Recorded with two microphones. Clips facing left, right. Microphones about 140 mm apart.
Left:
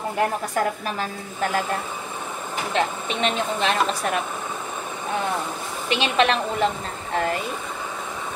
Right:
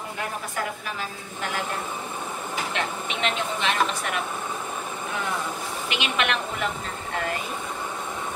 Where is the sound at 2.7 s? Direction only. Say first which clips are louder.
Left 9 dB; 35° left (ahead or behind).